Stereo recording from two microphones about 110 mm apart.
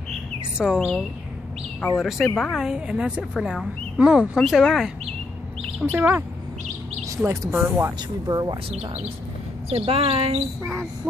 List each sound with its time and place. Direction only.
0.6 s a woman's voice: 5° right (ahead or behind)
5.8 s speech: 15° right (ahead or behind)
7.2 s speech: 25° right (ahead or behind)
8.3 s speech: 35° right (ahead or behind)
9.7 s speech: 60° right (ahead or behind)